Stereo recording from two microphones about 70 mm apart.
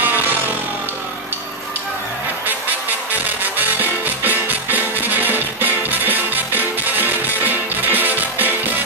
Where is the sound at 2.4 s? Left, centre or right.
Right.